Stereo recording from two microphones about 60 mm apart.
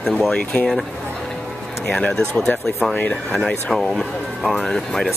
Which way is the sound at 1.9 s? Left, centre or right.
Centre.